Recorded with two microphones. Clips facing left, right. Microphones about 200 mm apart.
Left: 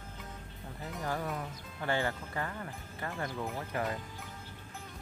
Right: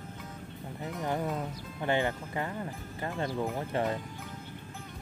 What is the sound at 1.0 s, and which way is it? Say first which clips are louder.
Speech: right 4 dB; 20° right (ahead or behind).